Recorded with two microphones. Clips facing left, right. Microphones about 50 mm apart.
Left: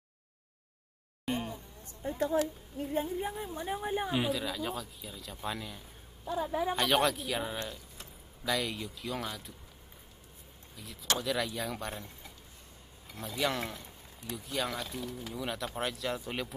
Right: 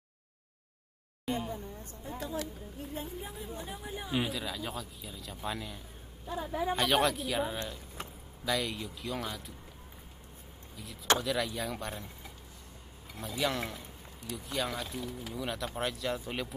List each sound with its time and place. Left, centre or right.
1.3 s speech: centre
2.0 s speech: left
4.1 s speech: centre
11.1 s speech: centre